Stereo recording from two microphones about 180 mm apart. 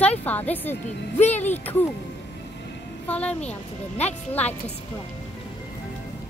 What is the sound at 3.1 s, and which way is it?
Speech, 5° left (ahead or behind).